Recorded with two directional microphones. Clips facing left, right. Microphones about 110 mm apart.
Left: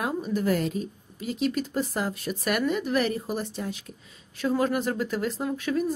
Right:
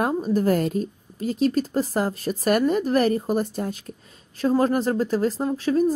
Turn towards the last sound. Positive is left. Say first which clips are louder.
# right 5 dB
turn(degrees=-35)  # may be behind; listen again after turning